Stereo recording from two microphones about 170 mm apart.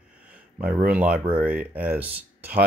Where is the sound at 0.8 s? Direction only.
5° right (ahead or behind).